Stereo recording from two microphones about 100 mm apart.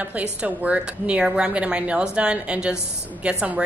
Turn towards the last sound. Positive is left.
turn(degrees=-15)  # may be behind; listen again after turning